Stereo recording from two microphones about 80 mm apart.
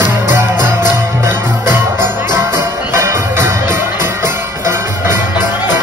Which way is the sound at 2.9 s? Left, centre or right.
Right.